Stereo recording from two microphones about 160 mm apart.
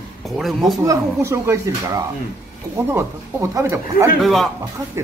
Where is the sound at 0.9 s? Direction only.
15° right (ahead or behind).